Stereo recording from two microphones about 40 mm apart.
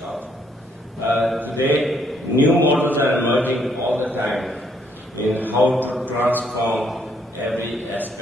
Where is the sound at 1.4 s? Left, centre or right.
Right.